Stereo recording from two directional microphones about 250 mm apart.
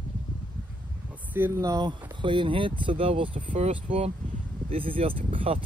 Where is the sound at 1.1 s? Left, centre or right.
Centre.